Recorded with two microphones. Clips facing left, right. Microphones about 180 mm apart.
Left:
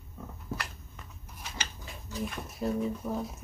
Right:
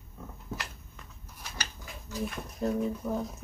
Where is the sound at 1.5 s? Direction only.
20° left (ahead or behind).